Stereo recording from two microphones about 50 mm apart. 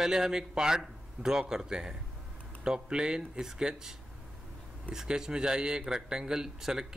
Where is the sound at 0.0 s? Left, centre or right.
Centre.